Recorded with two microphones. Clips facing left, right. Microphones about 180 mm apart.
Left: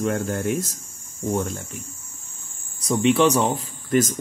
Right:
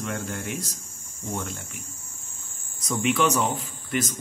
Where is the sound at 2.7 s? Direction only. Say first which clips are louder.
Left 6 dB; 30° left (ahead or behind).